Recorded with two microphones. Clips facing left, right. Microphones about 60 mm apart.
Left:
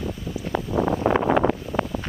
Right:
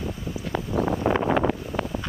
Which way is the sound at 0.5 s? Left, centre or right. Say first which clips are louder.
Left 2 dB; left.